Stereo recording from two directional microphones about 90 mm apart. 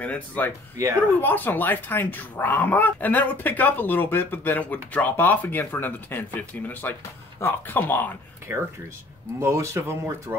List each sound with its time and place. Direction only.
0.0 s speech: 15° left (ahead or behind)
8.5 s speech: 25° right (ahead or behind)